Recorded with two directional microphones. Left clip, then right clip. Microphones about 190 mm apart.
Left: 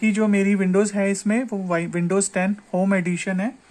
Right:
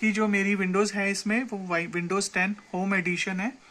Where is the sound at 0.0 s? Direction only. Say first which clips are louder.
Left 4 dB; 30° left (ahead or behind).